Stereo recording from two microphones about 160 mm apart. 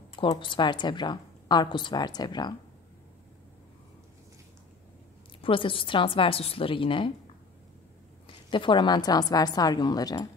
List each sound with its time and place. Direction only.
0.1 s a woman's voice: 30° left (ahead or behind)
5.4 s a woman's voice: 35° left (ahead or behind)
8.5 s a woman's voice: 30° left (ahead or behind)